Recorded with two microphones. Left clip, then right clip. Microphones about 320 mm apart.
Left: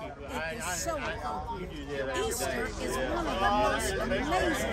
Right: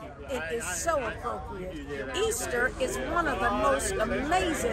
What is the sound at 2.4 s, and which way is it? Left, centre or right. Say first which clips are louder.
Speech: right 5 dB; left.